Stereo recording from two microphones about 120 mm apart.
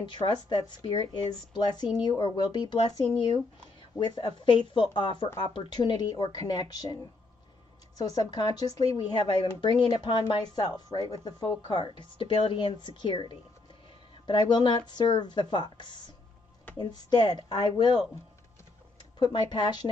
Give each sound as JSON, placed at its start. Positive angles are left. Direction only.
{"t": 0.0, "sound": "speech", "side_deg": 40}
{"t": 4.0, "sound": "speech", "side_deg": 35}
{"t": 8.0, "sound": "speech", "side_deg": 30}
{"t": 14.2, "sound": "speech", "side_deg": 40}
{"t": 19.1, "sound": "speech", "side_deg": 35}